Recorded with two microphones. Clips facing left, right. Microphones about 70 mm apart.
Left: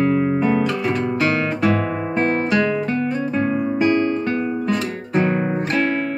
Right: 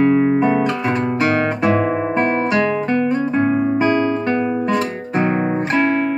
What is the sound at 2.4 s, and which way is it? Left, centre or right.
Guitar, right.